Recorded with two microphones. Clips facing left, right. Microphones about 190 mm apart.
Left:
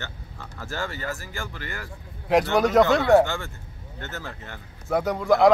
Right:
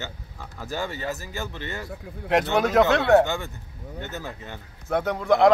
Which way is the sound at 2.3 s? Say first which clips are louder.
Left 1 dB; centre (ahead or behind).